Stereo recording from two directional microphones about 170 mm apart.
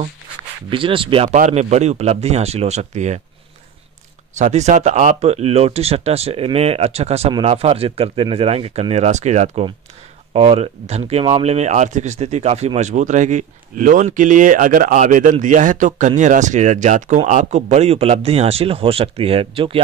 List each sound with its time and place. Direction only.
0.7 s speech: 30° right (ahead or behind)
1.3 s speech: 45° right (ahead or behind)
4.4 s speech: 40° right (ahead or behind)